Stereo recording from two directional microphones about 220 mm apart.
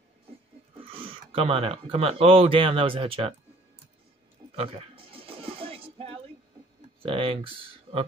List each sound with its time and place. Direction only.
0.7 s speech: 25° right (ahead or behind)
4.6 s a sound: 25° right (ahead or behind)
7.0 s speech: 25° right (ahead or behind)